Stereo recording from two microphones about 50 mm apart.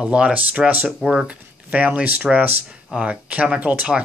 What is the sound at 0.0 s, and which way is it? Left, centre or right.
Speech, right.